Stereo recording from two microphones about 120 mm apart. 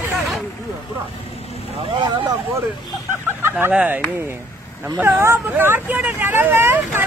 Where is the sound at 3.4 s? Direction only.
20° right (ahead or behind).